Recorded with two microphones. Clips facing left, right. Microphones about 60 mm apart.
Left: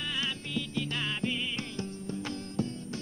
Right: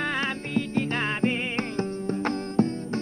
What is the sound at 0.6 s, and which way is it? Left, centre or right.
Music, right.